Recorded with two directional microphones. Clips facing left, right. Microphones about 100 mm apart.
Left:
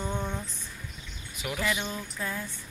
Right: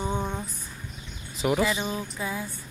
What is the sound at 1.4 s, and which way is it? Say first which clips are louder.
Speech: right 6 dB; 30° right (ahead or behind).